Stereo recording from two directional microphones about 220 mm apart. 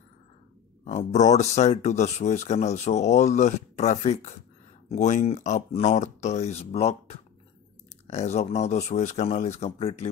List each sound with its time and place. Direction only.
0.8 s speech: 30° left (ahead or behind)